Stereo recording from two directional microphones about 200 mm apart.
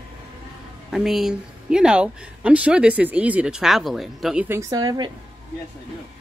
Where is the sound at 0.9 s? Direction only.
Centre (ahead or behind); by 5.1 s 20° right (ahead or behind).